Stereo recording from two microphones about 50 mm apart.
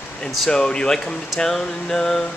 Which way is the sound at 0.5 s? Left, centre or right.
Centre.